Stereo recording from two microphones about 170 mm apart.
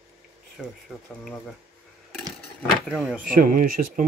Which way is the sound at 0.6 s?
Centre (ahead or behind).